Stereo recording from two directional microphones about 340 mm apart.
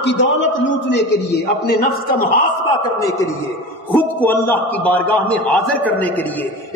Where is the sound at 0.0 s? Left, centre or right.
Left.